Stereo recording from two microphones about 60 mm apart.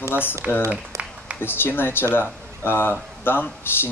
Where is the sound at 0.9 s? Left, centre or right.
Right.